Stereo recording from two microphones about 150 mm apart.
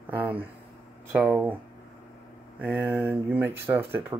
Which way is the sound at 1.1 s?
10° right (ahead or behind).